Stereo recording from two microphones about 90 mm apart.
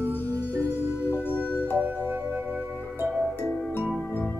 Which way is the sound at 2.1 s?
25° right (ahead or behind).